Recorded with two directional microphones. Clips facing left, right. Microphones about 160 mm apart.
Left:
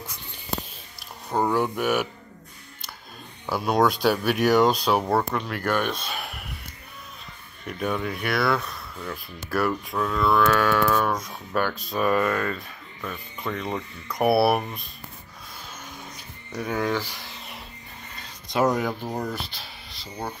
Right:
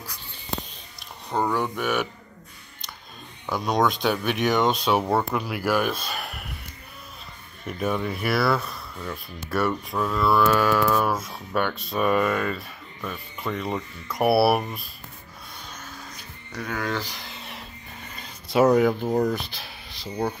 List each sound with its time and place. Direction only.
0.9 s speech: 10° left (ahead or behind)
3.4 s speech: 5° left (ahead or behind)
7.6 s speech: centre (ahead or behind)
16.5 s speech: 20° left (ahead or behind)
16.9 s a sound: 5° left (ahead or behind)
18.5 s speech: 5° right (ahead or behind)